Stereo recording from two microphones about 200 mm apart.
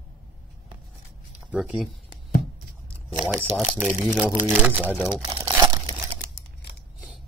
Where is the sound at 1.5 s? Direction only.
5° right (ahead or behind).